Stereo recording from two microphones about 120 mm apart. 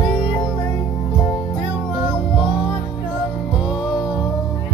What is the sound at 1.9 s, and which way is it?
Music, 10° right (ahead or behind).